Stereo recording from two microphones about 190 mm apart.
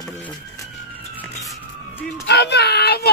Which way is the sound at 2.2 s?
60° left (ahead or behind).